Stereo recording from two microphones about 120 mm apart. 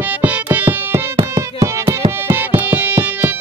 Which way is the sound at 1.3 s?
25° right (ahead or behind).